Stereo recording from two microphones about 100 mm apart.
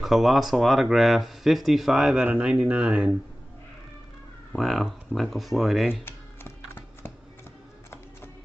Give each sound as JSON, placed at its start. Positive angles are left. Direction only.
{"t": 0.0, "sound": "speech", "side_deg": 0}
{"t": 4.5, "sound": "speech", "side_deg": 0}
{"t": 6.0, "sound": "music", "side_deg": 20}